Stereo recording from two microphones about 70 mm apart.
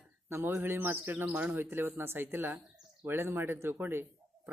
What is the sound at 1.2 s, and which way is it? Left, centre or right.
Speech, right.